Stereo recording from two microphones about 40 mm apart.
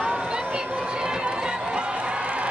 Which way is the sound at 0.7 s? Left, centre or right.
Right.